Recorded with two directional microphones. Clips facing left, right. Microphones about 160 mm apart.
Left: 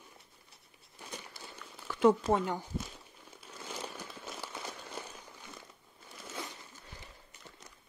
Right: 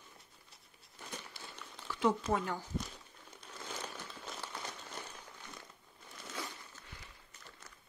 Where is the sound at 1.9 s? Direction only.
55° left (ahead or behind).